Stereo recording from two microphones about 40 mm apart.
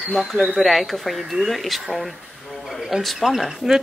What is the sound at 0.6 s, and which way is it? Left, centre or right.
Speech, centre.